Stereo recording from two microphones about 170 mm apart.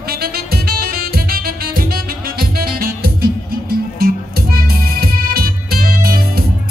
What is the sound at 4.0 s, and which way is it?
Music, 60° right (ahead or behind).